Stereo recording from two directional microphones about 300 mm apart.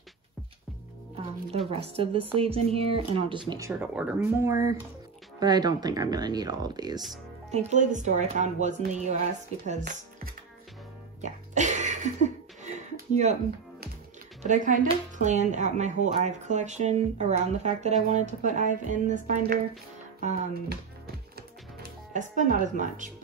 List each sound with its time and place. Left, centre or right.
1.7 s speech: centre
11.1 s a sound: right
14.4 s speech: right
22.1 s speech: right